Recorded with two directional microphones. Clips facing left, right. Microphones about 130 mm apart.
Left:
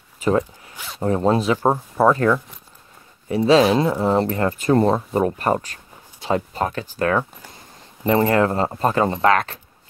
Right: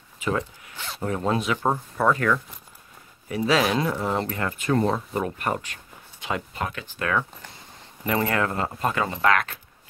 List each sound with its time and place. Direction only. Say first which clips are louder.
0.2 s zipper: left 7 dB; 35° left (ahead or behind)
1.0 s speech: left 7 dB; 35° left (ahead or behind)